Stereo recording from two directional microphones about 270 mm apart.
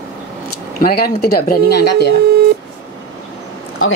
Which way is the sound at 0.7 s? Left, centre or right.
Left.